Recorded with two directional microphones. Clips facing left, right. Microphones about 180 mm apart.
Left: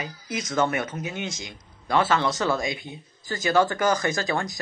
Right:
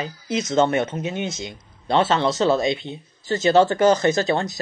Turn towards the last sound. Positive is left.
turn(degrees=-25)  # may be behind; listen again after turning